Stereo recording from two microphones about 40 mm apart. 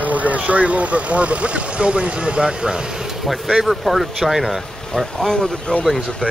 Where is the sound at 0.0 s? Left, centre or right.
Right; by 2.8 s centre.